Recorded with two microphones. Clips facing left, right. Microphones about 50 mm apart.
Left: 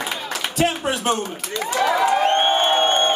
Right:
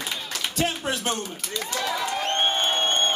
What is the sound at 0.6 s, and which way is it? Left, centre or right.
Speech, left.